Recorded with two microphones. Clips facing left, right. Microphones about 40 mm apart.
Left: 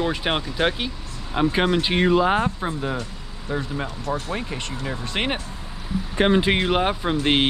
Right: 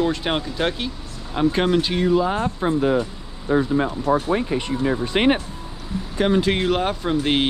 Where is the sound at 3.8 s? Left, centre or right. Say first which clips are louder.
Right 7 dB; right.